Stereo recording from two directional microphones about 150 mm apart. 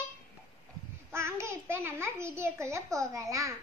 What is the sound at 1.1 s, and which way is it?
A child's voice, 20° right (ahead or behind).